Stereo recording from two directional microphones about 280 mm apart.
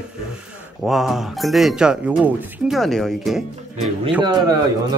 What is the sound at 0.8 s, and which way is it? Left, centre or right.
Speech, centre.